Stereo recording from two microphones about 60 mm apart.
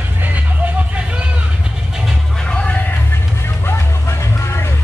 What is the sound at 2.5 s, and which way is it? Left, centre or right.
Music, left.